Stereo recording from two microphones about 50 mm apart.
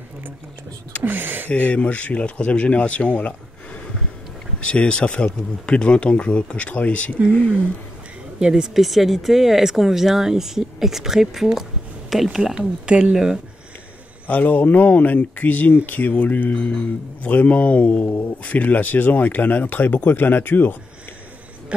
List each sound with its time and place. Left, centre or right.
1.0 s speech: right
1.6 s speech: left
4.6 s speech: left
8.4 s speech: centre
8.7 s speech: centre
12.4 s speech: centre
14.2 s speech: left